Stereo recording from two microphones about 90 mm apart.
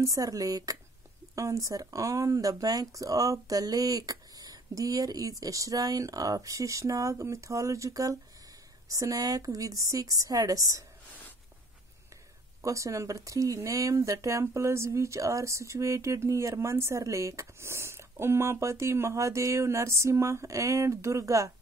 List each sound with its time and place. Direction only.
0.0 s speech: 40° right (ahead or behind)
12.6 s speech: 35° right (ahead or behind)